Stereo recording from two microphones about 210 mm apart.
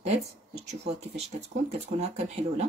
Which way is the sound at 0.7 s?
30° right (ahead or behind).